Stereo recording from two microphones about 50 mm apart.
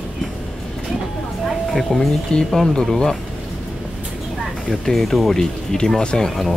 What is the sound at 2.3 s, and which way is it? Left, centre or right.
Speech, centre.